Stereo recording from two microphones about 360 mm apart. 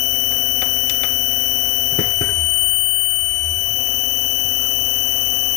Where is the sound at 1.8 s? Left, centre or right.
Centre.